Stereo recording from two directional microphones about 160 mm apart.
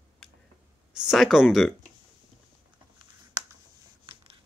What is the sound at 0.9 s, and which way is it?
Speech, centre (ahead or behind).